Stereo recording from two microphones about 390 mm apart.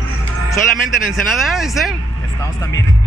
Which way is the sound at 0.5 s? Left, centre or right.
Centre.